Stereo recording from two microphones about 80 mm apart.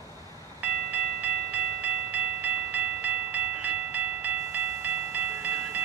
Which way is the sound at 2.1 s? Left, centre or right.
Right.